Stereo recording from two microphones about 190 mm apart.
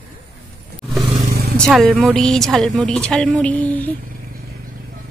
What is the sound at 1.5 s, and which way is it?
A woman's voice, 5° left (ahead or behind).